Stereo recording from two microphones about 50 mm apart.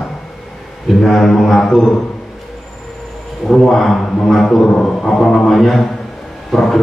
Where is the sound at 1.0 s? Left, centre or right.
Centre.